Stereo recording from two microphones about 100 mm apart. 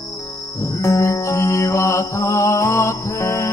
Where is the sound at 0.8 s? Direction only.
30° left (ahead or behind).